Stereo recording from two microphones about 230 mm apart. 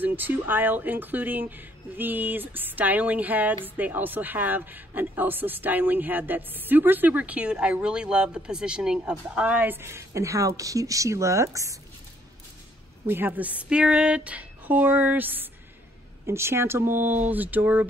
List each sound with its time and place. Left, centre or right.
0.0 s speech: centre
13.0 s speech: centre